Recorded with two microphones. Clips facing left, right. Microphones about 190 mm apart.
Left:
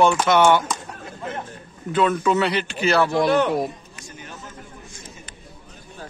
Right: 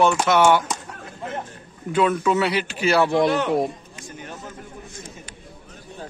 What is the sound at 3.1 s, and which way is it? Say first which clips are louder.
Speech: even; 25° right (ahead or behind).